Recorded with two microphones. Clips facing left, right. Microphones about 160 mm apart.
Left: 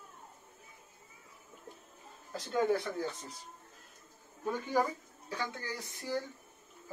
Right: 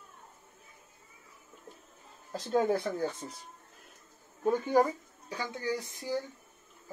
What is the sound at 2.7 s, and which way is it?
Speech, 40° right (ahead or behind).